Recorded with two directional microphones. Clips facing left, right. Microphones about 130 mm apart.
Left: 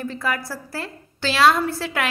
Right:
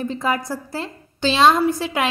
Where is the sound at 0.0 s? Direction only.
20° right (ahead or behind).